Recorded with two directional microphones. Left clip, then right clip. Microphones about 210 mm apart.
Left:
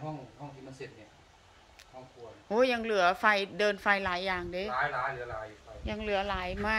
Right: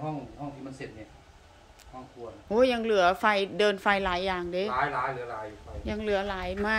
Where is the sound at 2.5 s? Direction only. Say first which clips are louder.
Right 3 dB; centre (ahead or behind).